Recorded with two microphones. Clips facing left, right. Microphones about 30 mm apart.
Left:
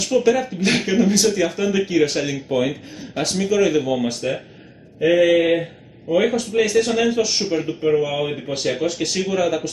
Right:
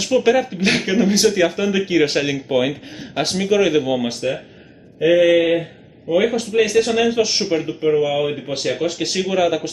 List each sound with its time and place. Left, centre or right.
0.0 s speech: centre
5.0 s speech: centre
6.3 s speech: centre